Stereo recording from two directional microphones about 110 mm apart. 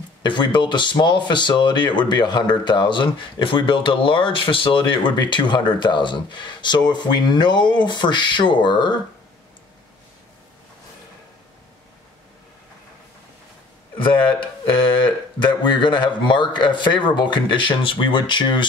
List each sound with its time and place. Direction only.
0.2 s speech: 45° left (ahead or behind)
15.0 s speech: 45° left (ahead or behind)